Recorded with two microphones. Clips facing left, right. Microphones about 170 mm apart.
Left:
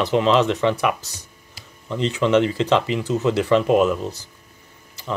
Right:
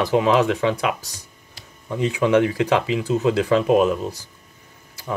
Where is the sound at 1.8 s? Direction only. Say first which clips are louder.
Even; 10° right (ahead or behind).